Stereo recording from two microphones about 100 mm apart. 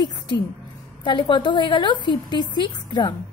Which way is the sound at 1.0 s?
50° left (ahead or behind).